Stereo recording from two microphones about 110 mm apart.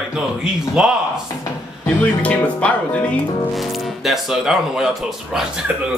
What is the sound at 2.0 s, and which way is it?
Speech, 15° left (ahead or behind).